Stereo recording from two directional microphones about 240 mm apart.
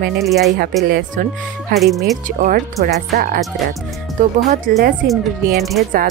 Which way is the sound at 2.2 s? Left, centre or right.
Right.